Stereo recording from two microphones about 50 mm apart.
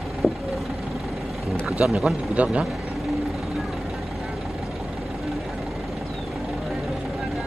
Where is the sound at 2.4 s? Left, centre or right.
Right.